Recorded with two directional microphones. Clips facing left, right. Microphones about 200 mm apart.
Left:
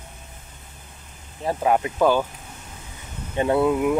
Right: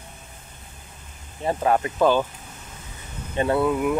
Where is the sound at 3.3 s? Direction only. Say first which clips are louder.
Left 2 dB; 15° left (ahead or behind).